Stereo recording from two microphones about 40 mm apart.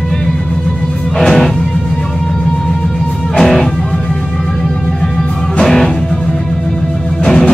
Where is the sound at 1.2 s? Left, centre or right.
Centre.